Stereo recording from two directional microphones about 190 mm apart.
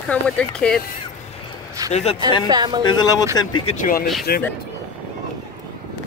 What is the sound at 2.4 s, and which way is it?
Speech, 20° right (ahead or behind).